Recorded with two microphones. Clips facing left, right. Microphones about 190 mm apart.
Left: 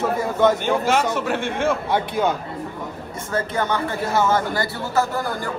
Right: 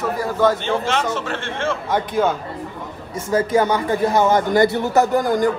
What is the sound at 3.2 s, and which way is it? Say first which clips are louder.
A man's voice: right 6 dB; 10° right (ahead or behind).